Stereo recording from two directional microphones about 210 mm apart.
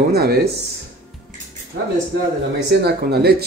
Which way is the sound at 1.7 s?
50° right (ahead or behind).